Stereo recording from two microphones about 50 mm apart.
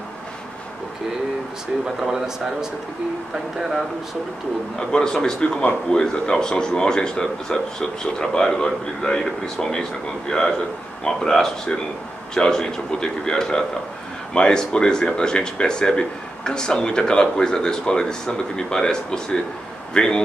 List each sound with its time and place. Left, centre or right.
2.0 s speech: centre
4.7 s speech: centre